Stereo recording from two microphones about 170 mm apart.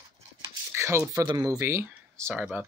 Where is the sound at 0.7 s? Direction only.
15° right (ahead or behind).